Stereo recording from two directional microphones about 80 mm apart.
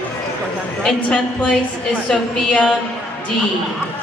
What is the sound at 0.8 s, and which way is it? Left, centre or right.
A woman's voice, centre.